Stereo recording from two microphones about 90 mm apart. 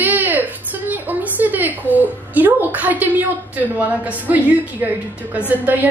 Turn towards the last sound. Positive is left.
turn(degrees=-20)  # may be behind; listen again after turning